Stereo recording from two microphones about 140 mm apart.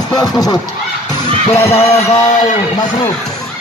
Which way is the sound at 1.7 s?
50° left (ahead or behind).